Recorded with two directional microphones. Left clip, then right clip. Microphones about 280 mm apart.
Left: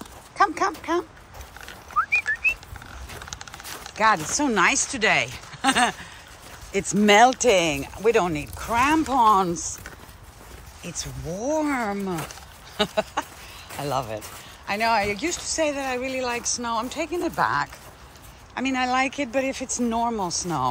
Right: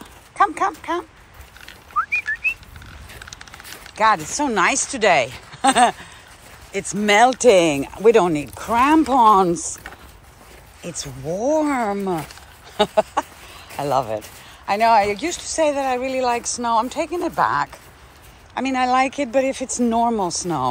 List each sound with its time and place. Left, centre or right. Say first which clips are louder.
0.4 s speech: right 3 dB; centre
2.0 s whistling: right 1 dB; centre
3.3 s a sound: even; left
4.0 s speech: right 3 dB; centre
6.7 s speech: even; centre
10.8 s speech: right 4 dB; centre